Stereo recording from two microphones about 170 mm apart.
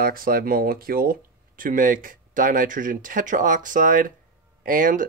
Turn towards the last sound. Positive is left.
turn(degrees=-50)  # may be behind; listen again after turning